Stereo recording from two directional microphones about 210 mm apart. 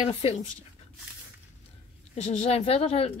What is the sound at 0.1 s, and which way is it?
Speech, 30° left (ahead or behind).